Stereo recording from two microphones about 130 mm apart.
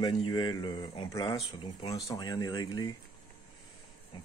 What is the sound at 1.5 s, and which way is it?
Speech, 50° left (ahead or behind).